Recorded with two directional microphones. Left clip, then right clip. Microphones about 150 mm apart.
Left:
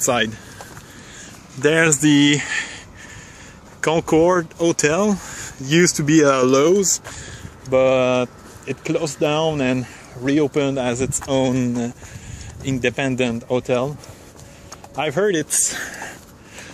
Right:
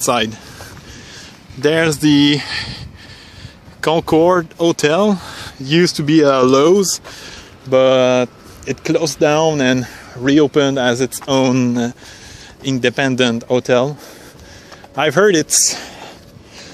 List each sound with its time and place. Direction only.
0.0 s speech: 45° right (ahead or behind)
1.6 s speech: 25° right (ahead or behind)
3.8 s speech: 45° right (ahead or behind)
5.7 s speech: 20° right (ahead or behind)
6.4 s speech: 55° right (ahead or behind)
7.7 s speech: 70° right (ahead or behind)
8.6 s speech: 50° right (ahead or behind)
9.0 s speech: 80° right
9.4 s speech: 65° right (ahead or behind); by 11.9 s 90° right
12.6 s speech: 60° right (ahead or behind); by 13.9 s 90° right
15.0 s speech: 85° right
15.7 s speech: 15° right (ahead or behind)